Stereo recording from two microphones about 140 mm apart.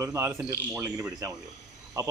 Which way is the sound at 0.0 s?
20° right (ahead or behind).